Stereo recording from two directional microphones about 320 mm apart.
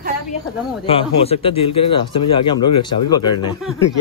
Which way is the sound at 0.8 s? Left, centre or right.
Centre.